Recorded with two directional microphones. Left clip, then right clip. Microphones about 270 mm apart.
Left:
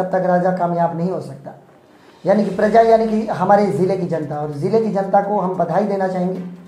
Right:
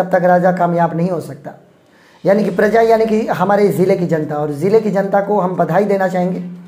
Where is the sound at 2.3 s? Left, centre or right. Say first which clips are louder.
Right 3 dB; right.